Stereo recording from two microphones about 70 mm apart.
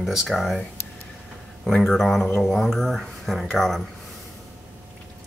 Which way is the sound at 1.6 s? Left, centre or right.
Centre.